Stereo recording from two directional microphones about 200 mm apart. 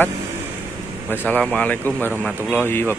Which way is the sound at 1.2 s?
5° left (ahead or behind).